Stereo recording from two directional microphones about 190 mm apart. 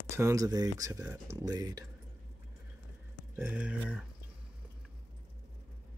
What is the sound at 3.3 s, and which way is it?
Speech, 5° right (ahead or behind).